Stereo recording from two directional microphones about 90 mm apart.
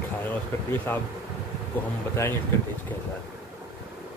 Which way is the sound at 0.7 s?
20° left (ahead or behind).